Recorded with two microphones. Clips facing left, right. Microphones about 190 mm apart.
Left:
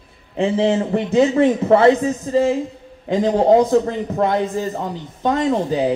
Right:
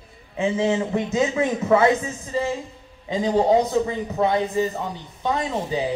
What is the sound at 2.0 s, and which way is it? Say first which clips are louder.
Speech: left 9 dB; 45° left (ahead or behind).